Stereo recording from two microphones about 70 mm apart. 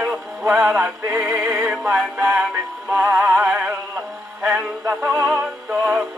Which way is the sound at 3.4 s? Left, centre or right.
Right.